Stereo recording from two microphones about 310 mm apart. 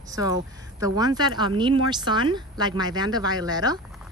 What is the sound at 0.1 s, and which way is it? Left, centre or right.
Speech, centre.